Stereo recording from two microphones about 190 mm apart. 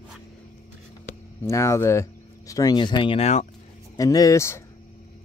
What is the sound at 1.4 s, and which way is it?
Speech, 15° left (ahead or behind).